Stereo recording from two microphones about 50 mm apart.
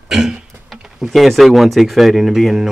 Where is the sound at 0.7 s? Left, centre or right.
Centre.